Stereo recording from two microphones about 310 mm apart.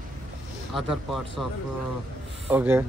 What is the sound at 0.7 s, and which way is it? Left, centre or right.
Speech, centre.